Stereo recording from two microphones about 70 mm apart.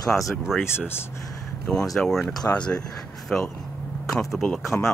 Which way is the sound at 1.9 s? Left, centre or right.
Centre.